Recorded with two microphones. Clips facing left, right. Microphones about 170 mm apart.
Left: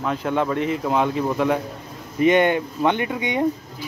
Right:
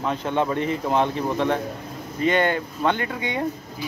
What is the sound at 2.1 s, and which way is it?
Speech, 20° left (ahead or behind).